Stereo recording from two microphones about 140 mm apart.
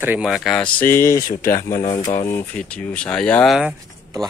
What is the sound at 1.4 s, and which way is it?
Speech, 80° left.